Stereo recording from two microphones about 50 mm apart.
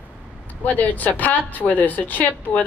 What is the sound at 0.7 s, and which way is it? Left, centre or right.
Speech, left.